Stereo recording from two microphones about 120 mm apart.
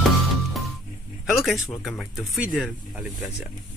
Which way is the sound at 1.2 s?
5° right (ahead or behind).